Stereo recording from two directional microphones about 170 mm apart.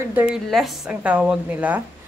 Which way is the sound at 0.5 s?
Centre (ahead or behind).